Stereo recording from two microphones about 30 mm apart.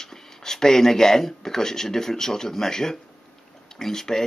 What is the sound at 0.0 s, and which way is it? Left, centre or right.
Speech, centre.